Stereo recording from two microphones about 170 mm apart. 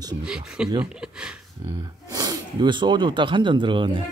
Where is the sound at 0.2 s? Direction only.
5° right (ahead or behind).